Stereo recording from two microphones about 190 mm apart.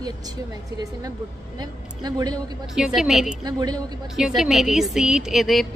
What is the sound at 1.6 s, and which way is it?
Speech, 20° right (ahead or behind).